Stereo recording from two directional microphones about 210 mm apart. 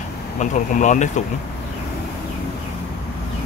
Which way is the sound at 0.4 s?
35° left (ahead or behind).